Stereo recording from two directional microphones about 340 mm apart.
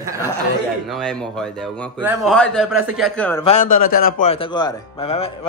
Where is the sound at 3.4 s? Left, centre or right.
Left.